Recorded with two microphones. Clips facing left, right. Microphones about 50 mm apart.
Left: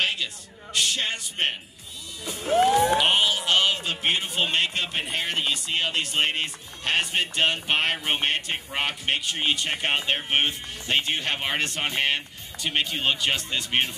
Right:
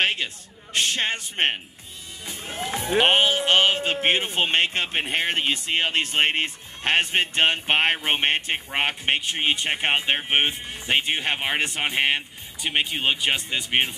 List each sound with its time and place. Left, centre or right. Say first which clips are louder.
0.0 s a sound: right 3 dB; right
2.4 s speech: left 12 dB; left
2.9 s a man's voice: right 2 dB; right